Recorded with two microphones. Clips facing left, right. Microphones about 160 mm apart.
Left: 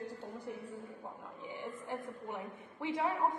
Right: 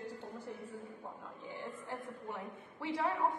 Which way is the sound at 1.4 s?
15° left (ahead or behind).